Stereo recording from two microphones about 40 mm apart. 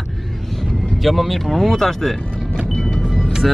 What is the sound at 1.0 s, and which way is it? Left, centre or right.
Speech, centre.